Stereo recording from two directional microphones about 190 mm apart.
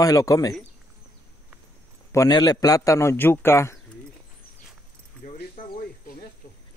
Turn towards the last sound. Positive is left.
turn(degrees=50)  # may be behind; listen again after turning